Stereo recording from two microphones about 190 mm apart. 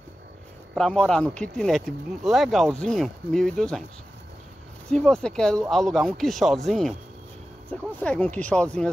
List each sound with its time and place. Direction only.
0.7 s speech: 5° left (ahead or behind)
4.8 s speech: 5° left (ahead or behind)